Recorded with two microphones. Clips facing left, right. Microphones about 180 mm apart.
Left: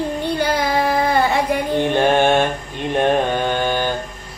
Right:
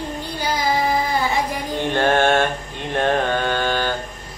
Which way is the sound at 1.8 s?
15° left (ahead or behind).